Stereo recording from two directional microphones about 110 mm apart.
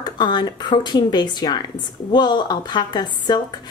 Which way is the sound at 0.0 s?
45° left (ahead or behind).